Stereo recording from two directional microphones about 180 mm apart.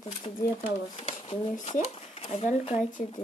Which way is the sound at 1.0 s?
35° left (ahead or behind).